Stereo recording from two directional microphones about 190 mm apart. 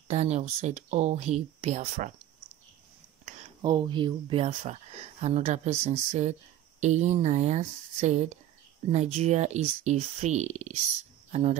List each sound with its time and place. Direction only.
0.1 s speech: 35° right (ahead or behind)
3.6 s speech: 25° right (ahead or behind)
4.5 s speech: 35° right (ahead or behind)